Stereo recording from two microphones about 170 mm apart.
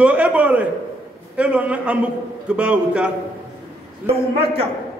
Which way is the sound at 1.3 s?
5° right (ahead or behind).